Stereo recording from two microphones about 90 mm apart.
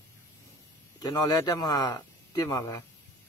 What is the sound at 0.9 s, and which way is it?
Speech, 50° left (ahead or behind).